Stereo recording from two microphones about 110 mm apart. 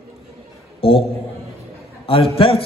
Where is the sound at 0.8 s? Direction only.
60° left (ahead or behind).